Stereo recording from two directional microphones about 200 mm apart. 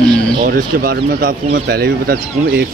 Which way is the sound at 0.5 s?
50° right (ahead or behind).